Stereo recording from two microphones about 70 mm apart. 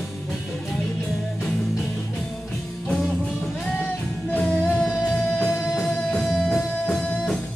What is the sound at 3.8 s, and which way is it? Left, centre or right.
Music, centre.